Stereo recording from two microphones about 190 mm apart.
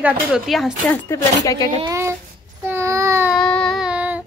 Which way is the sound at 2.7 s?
15° right (ahead or behind).